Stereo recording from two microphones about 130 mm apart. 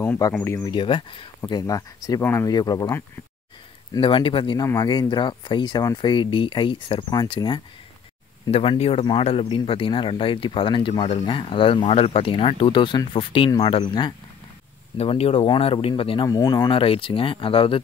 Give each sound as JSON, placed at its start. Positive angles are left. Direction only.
{"t": 0.3, "sound": "speech", "side_deg": 20}
{"t": 0.7, "sound": "speech", "side_deg": 40}
{"t": 2.5, "sound": "speech", "side_deg": 30}
{"t": 4.0, "sound": "speech", "side_deg": 40}
{"t": 8.5, "sound": "speech", "side_deg": 50}
{"t": 15.0, "sound": "speech", "side_deg": 50}
{"t": 16.3, "sound": "speech", "side_deg": 30}
{"t": 16.7, "sound": "speech", "side_deg": 45}